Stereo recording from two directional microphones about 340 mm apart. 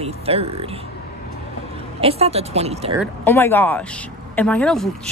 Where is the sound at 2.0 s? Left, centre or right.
Centre.